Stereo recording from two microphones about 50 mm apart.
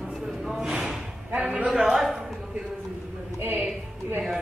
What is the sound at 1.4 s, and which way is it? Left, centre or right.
Speech, right.